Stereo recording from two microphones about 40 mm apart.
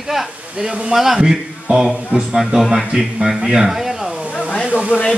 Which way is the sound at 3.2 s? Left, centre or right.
Centre.